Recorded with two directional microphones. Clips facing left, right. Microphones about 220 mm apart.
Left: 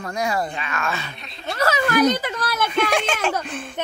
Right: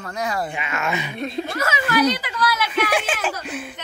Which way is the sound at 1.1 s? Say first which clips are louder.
Right 7 dB; 50° right (ahead or behind).